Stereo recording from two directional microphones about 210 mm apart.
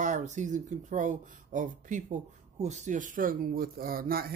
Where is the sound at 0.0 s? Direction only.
35° right (ahead or behind).